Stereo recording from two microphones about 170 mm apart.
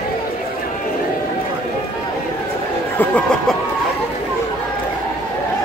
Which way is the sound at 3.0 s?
10° left (ahead or behind).